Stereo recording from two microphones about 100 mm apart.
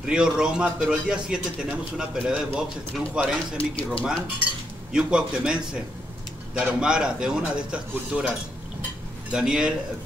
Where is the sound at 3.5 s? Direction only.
65° left (ahead or behind).